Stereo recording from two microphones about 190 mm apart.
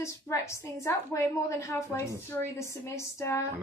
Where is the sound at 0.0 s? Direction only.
15° left (ahead or behind).